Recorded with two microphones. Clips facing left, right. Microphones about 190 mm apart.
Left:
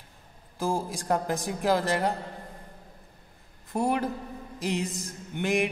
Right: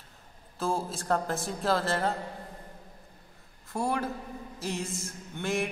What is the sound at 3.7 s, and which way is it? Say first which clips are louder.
A man's voice: left 3 dB; 20° left (ahead or behind).